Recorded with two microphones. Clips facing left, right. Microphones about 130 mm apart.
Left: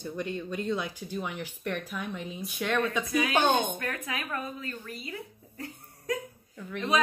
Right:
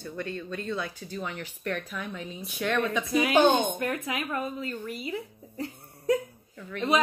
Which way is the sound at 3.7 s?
25° right (ahead or behind).